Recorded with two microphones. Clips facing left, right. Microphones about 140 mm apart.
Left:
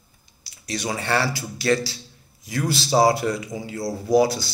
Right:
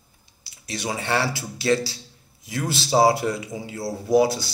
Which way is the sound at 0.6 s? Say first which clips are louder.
Left 1 dB; 25° right (ahead or behind).